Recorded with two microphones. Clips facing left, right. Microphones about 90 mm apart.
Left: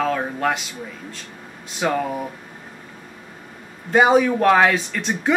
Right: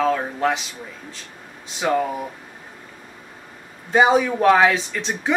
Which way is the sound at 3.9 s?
5° left (ahead or behind).